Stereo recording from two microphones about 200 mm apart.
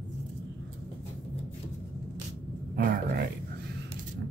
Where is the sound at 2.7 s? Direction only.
45° right (ahead or behind).